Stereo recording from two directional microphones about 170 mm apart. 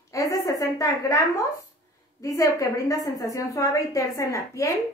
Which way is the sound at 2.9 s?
20° left (ahead or behind).